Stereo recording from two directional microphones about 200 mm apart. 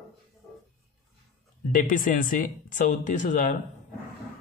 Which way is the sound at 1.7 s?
40° left (ahead or behind).